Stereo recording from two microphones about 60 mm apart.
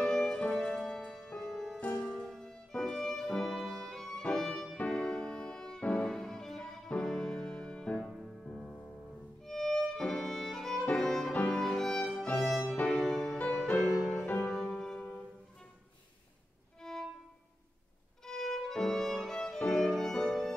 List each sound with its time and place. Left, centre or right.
0.1 s music: centre
1.8 s music: left
2.0 s music: centre
6.0 s music: centre
8.2 s music: centre
9.4 s violin: centre
10.9 s music: centre
12.8 s music: centre
14.2 s music: left
14.5 s music: centre
16.8 s violin: centre
18.2 s violin: centre